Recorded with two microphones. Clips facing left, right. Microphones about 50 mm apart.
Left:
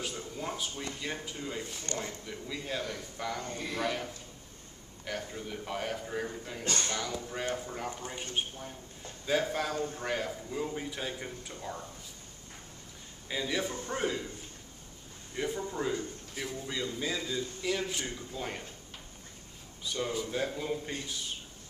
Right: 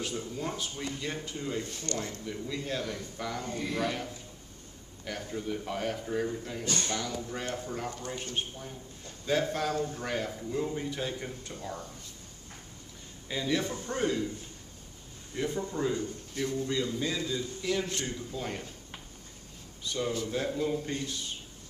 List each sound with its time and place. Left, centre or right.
0.0 s a man's voice: centre
1.9 s a man's voice: centre
2.2 s a man's voice: centre
13.3 s a man's voice: centre
15.3 s a man's voice: centre
19.8 s a man's voice: centre